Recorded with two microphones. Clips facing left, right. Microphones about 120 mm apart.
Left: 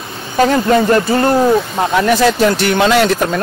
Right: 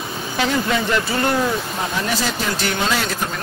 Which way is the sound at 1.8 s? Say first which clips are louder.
Left 10 dB; 65° left (ahead or behind).